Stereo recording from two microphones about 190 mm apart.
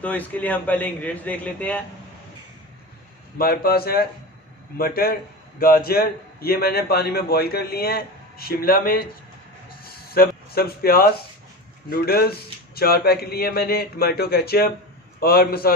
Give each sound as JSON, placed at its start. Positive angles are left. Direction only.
{"t": 0.0, "sound": "a man's voice", "side_deg": 10}
{"t": 3.3, "sound": "a man's voice", "side_deg": 55}
{"t": 10.0, "sound": "a man's voice", "side_deg": 55}